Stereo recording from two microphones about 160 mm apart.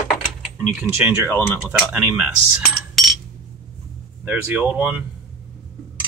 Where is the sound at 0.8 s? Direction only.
15° right (ahead or behind).